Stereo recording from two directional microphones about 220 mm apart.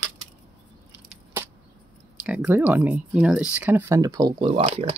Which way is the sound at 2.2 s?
5° right (ahead or behind).